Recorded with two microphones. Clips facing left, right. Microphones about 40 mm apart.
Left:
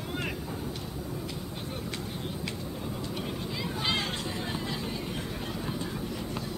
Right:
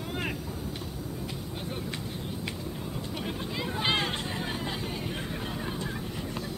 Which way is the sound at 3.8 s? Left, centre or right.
Right.